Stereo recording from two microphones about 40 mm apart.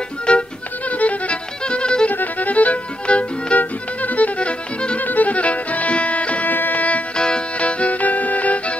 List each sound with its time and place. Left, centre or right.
0.3 s music: left
2.1 s violin: left
3.5 s music: left
5.0 s music: left
6.5 s music: left
7.2 s music: left